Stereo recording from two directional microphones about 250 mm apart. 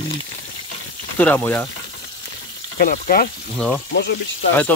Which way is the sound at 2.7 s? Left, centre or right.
Left.